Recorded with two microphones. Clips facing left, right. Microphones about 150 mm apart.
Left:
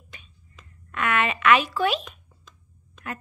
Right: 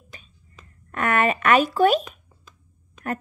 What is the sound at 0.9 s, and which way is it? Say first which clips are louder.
A woman's voice: right 4 dB; 40° right (ahead or behind).